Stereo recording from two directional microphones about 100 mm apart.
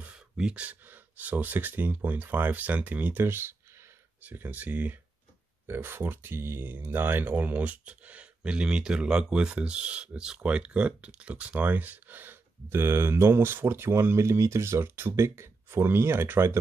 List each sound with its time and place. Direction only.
0.0 s speech: 10° right (ahead or behind)